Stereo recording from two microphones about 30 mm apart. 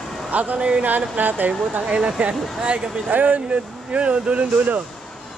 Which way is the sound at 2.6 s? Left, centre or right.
Right.